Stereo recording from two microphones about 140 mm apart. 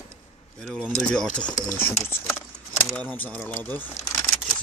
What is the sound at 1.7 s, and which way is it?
Speech, 15° left (ahead or behind).